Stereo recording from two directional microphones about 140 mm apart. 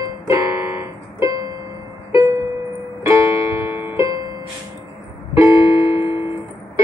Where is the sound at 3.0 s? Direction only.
20° right (ahead or behind).